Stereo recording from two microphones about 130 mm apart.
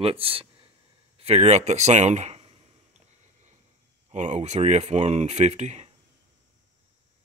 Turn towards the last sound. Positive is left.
turn(degrees=-60)  # may be behind; listen again after turning